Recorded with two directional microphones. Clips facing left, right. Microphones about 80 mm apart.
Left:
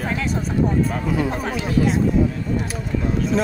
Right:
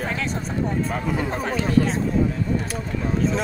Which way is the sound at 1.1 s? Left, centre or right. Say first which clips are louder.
Left 2 dB; centre.